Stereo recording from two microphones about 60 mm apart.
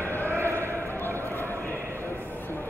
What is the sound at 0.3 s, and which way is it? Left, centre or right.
Basketball bounce, right.